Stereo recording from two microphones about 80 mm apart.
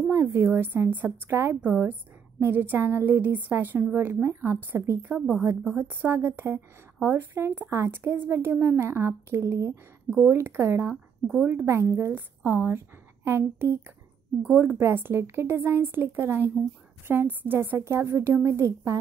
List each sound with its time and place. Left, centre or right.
0.1 s a woman's voice: right
10.0 s a woman's voice: right